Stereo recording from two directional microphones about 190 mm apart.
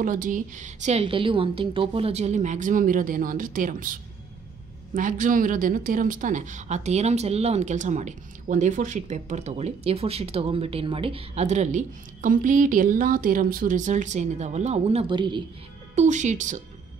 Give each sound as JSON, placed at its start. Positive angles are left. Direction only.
{"t": 0.0, "sound": "speech", "side_deg": -45}
{"t": 15.9, "sound": "speech", "side_deg": -40}